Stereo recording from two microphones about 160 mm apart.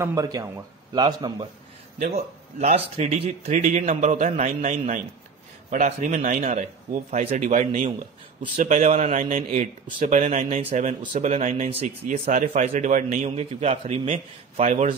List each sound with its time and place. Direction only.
0.0 s a man's voice: 20° right (ahead or behind)
2.0 s a man's voice: 40° right (ahead or behind)
8.7 s a man's voice: 40° right (ahead or behind)